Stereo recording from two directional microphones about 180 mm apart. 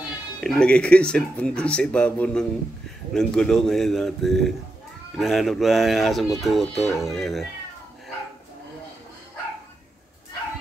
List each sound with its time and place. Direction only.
0.4 s speech: 5° left (ahead or behind)